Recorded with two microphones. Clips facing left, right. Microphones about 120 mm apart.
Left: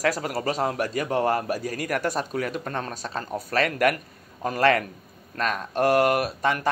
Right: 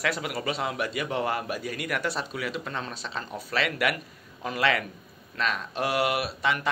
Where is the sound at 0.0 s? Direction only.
40° left (ahead or behind).